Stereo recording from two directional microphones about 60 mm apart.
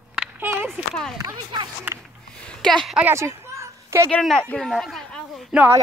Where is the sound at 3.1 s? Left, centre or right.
Right.